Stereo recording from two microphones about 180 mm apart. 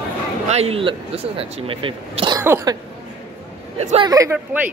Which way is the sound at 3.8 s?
40° right (ahead or behind).